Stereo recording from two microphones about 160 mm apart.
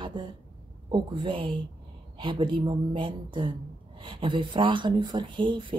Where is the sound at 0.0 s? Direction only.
30° right (ahead or behind).